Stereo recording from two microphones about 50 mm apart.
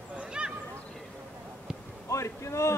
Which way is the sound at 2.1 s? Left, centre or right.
Left.